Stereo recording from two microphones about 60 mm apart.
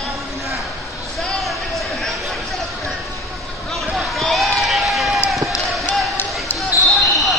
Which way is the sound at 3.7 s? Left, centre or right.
Centre.